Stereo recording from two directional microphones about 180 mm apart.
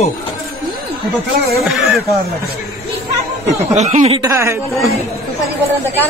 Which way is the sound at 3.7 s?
40° right (ahead or behind).